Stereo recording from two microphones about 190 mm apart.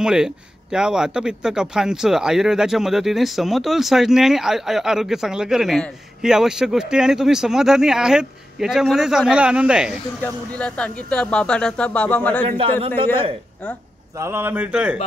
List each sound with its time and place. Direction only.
0.0 s speech: 5° right (ahead or behind)
10.2 s speech: 5° left (ahead or behind)
12.4 s speech: 30° right (ahead or behind)
14.1 s speech: 15° right (ahead or behind)